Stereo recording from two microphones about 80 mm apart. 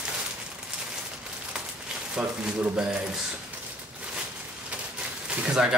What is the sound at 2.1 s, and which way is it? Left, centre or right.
Speech, centre.